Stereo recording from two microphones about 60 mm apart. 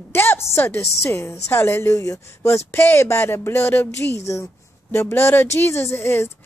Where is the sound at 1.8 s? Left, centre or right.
Left.